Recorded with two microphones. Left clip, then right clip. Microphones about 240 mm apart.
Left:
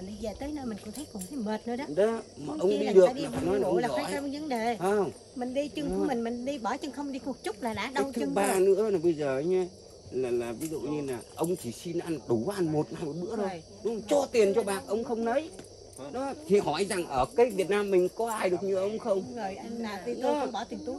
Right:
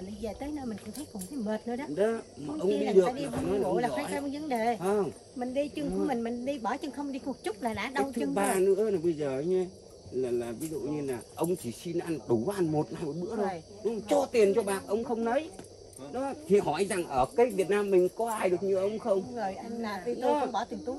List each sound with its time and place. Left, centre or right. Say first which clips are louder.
0.2 s speech: left 1 dB; centre
2.0 s speech: left 2 dB; left
2.4 s speech: left 2 dB; centre
8.9 s speech: left 2 dB; left
10.9 s speech: even; centre
19.3 s speech: right 1 dB; centre
20.2 s speech: right 1 dB; centre